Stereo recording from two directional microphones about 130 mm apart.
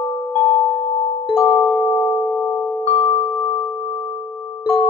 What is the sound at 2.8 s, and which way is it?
Music, 40° left (ahead or behind).